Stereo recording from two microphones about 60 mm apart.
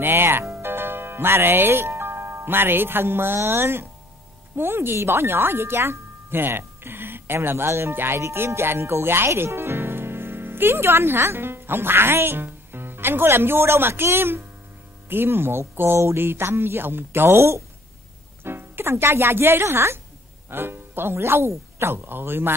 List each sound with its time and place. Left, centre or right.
0.0 s speech: right
8.2 s speech: right